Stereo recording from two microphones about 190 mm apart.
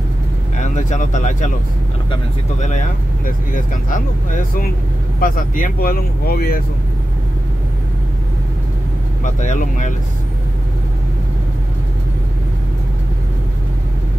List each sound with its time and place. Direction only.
0.6 s speech: 40° left (ahead or behind)
3.3 s speech: 45° left (ahead or behind)
9.2 s speech: 40° left (ahead or behind)